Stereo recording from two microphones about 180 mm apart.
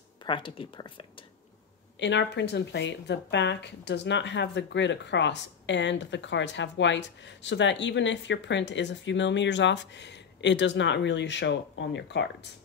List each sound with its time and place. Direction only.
0.2 s speech: 25° left (ahead or behind)
2.0 s speech: 75° left (ahead or behind)